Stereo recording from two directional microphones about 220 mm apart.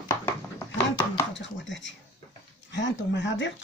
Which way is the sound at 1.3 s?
55° left (ahead or behind).